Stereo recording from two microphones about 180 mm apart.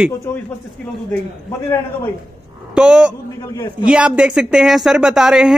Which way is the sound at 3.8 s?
5° right (ahead or behind).